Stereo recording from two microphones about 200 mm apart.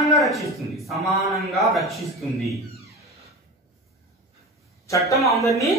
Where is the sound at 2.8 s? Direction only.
15° right (ahead or behind).